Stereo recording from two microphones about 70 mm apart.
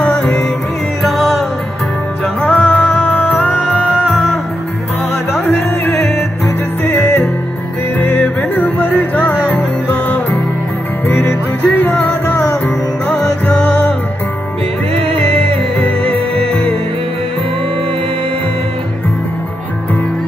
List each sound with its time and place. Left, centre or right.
0.0 s music: centre
1.0 s music: centre
2.4 s music: centre
6.8 s music: left
13.2 s music: centre